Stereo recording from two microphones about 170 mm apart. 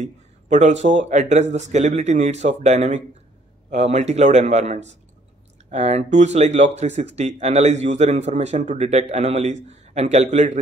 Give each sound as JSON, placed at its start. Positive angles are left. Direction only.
{"t": 0.0, "sound": "a man's voice", "side_deg": -45}